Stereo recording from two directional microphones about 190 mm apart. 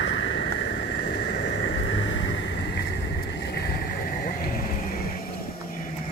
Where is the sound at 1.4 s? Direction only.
70° left (ahead or behind).